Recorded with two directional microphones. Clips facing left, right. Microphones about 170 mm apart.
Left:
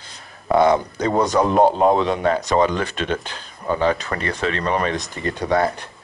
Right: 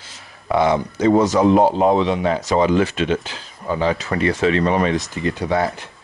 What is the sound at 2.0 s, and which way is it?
Speech, 50° left (ahead or behind).